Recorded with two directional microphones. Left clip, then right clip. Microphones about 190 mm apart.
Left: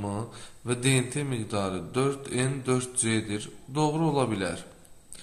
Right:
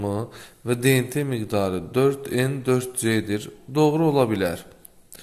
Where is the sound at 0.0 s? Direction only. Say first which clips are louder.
Right 7 dB; 30° right (ahead or behind).